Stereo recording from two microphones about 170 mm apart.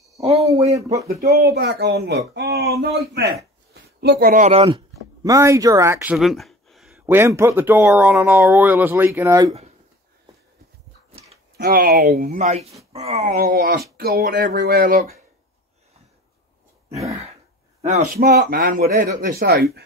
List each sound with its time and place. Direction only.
0.2 s a sound: 35° right (ahead or behind)
0.5 s speech: 20° right (ahead or behind)
1.3 s speech: 70° right (ahead or behind)
4.0 s speech: 65° right (ahead or behind)
4.5 s speech: 35° right (ahead or behind)
5.2 s speech: 20° right (ahead or behind)
6.1 s a sound: centre (ahead or behind)
7.1 s speech: 15° right (ahead or behind)
11.5 s speech: 60° right (ahead or behind)
12.4 s speech: 40° right (ahead or behind)
13.3 s speech: 60° right (ahead or behind)
17.8 s a man's voice: 45° right (ahead or behind)
18.3 s speech: 60° right (ahead or behind)